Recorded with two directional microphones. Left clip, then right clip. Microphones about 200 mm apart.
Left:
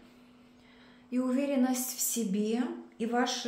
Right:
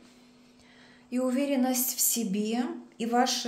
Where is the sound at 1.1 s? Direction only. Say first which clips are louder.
Right 2 dB; 25° right (ahead or behind).